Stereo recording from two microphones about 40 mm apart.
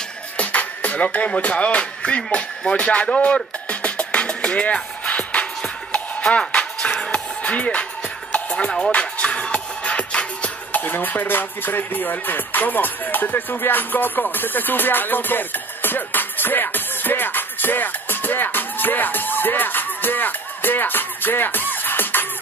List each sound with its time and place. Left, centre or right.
0.4 s music: left
10.7 s music: left